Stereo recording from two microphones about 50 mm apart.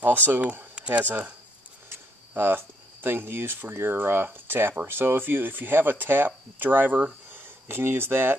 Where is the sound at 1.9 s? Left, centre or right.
Right.